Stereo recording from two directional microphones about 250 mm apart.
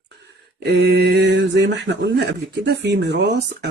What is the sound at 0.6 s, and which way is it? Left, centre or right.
Speech, right.